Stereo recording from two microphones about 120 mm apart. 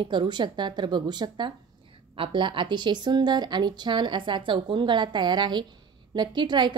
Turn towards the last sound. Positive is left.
turn(degrees=-40)  # may be behind; listen again after turning